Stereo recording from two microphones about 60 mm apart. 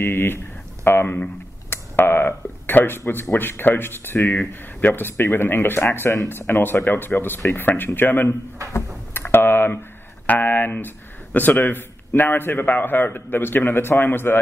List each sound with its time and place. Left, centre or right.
0.0 s a man's voice: left
8.7 s computer keyboard: left
10.2 s a man's voice: left